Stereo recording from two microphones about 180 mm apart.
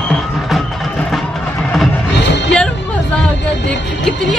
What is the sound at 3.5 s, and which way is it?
Vehicle, 80° left.